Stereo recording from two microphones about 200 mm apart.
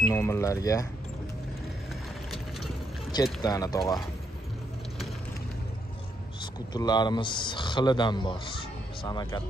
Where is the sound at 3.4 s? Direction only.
20° left (ahead or behind).